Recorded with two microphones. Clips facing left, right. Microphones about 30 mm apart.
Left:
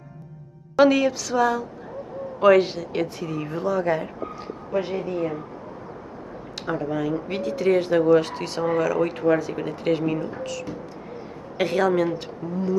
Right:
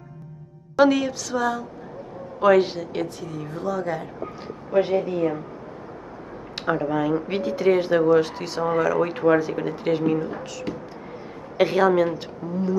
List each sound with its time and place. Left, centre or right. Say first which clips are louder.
0.7 s speech: left 1 dB; centre
4.7 s a woman's voice: right 5 dB; right
6.5 s speech: right 3 dB; right
9.5 s speech: even; centre